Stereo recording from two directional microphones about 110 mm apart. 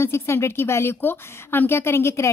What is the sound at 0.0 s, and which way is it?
A woman's voice, 25° left (ahead or behind).